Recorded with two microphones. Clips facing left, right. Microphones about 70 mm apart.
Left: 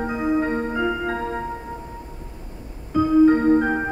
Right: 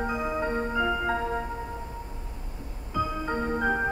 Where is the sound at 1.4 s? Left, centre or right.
Centre.